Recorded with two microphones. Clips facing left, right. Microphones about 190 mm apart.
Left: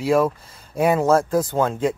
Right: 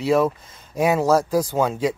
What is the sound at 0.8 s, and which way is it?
Speech, 5° right (ahead or behind).